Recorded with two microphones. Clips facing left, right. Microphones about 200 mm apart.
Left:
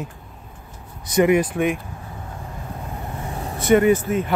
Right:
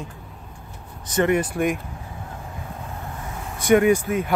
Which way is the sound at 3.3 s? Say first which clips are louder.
Left 4 dB; 35° left (ahead or behind).